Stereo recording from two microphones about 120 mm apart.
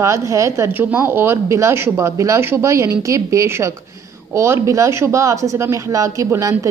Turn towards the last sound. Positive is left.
turn(degrees=-25)  # may be behind; listen again after turning